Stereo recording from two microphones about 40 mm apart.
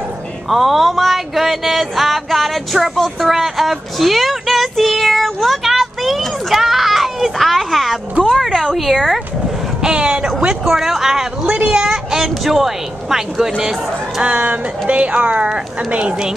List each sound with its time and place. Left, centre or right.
0.5 s a sound: centre
9.8 s speech: right
10.6 s speech: centre
11.5 s a sound: right
12.2 s speech: centre
14.2 s speech: right